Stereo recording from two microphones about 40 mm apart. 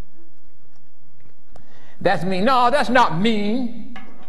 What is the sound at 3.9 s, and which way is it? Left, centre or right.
Music, centre.